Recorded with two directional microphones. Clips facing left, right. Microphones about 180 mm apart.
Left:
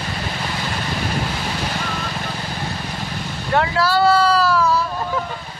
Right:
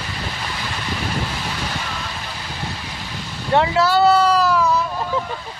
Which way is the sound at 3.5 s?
20° right (ahead or behind).